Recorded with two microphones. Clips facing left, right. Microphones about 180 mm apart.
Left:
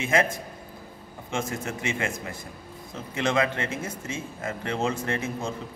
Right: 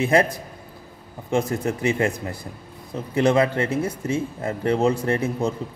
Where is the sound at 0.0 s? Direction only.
35° right (ahead or behind).